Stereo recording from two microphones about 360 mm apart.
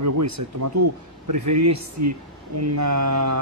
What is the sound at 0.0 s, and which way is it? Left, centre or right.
Speech, right.